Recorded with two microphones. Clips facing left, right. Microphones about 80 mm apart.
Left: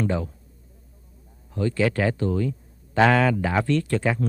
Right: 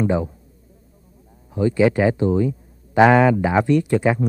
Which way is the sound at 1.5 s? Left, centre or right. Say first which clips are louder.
Right 6 dB; centre.